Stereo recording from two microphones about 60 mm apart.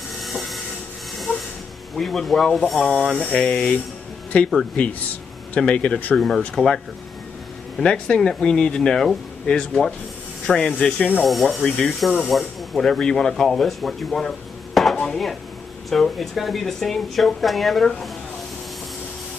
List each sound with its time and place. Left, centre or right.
0.2 s a sound: centre
2.0 s speech: centre; by 4.5 s left
5.6 s speech: centre
6.1 s speech: centre
7.8 s speech: centre
11.2 s speech: centre